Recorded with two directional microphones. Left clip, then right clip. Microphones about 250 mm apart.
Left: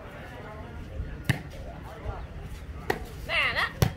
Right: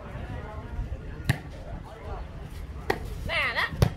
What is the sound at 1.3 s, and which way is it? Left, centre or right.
Basketball bounce, centre.